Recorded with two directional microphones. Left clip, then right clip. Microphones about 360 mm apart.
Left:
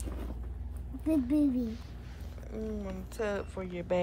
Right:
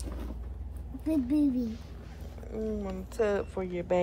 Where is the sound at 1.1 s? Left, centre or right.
Centre.